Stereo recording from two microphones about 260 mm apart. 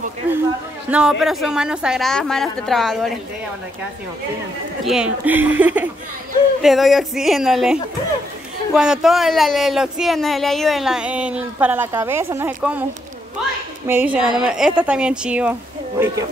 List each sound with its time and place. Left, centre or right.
0.2 s speech: centre
4.8 s speech: centre
13.8 s speech: centre